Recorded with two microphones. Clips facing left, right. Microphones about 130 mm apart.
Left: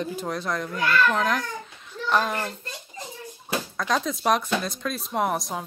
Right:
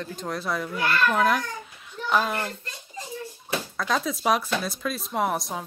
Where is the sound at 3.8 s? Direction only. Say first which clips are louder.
Left 1 dB; centre (ahead or behind).